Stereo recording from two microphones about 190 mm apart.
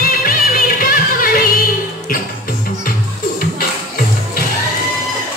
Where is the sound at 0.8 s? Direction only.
50° left (ahead or behind).